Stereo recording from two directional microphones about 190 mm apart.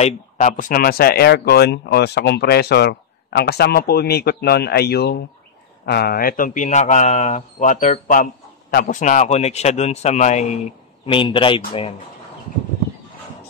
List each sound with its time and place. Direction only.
0.0 s speech: 40° left (ahead or behind)
11.1 s speech: 25° left (ahead or behind)